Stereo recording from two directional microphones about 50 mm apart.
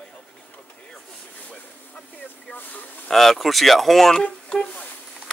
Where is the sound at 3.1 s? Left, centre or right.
Centre.